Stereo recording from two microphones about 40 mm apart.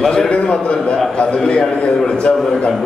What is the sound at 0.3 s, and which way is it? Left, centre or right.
A man's voice, left.